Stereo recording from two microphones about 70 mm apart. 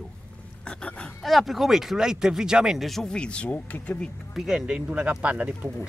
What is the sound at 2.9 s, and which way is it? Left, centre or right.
Speech, centre.